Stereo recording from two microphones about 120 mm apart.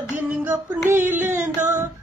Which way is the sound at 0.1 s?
15° right (ahead or behind).